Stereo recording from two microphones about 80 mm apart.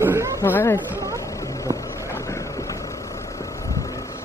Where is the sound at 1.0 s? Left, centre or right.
Left.